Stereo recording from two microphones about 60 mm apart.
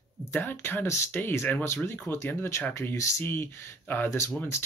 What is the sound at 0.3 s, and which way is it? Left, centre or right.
Speech, left.